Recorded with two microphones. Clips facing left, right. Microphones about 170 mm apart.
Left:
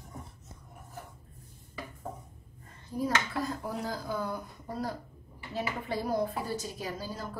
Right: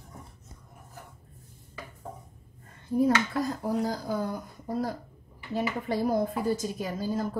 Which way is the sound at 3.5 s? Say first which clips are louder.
Right 6 dB; 40° right (ahead or behind).